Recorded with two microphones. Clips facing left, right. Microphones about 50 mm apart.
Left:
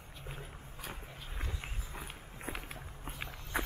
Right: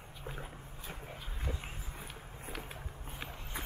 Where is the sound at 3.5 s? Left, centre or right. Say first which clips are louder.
Left 8 dB; left.